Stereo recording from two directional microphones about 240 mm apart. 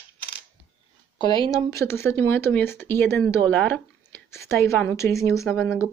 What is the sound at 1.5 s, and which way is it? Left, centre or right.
Speech, centre.